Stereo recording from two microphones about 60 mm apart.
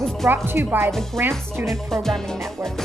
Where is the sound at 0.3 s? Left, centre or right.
Right.